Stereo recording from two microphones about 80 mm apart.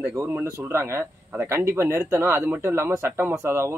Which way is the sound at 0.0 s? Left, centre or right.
Right.